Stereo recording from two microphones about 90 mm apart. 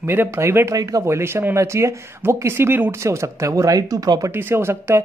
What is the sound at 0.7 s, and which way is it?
Speech, 40° right (ahead or behind).